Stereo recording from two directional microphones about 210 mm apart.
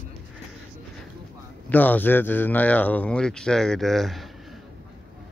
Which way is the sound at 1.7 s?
10° left (ahead or behind).